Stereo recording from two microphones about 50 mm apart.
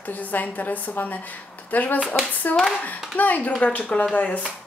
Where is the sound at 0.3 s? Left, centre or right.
Left.